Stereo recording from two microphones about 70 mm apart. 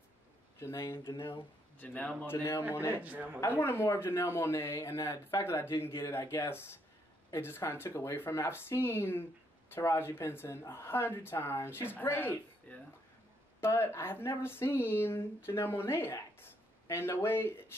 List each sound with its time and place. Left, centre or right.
0.6 s speech: left
1.8 s a man's voice: left
2.2 s speech: left
3.0 s a man's voice: right
3.4 s a man's voice: left
13.6 s speech: left